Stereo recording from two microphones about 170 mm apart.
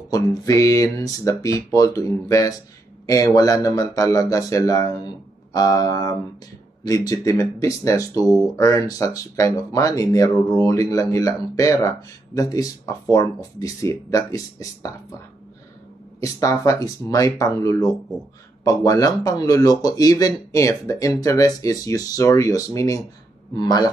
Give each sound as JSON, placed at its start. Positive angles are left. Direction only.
{"t": 0.1, "sound": "speech", "side_deg": 20}
{"t": 16.2, "sound": "speech", "side_deg": 20}